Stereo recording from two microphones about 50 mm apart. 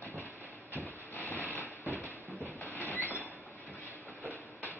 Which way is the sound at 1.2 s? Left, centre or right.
Left.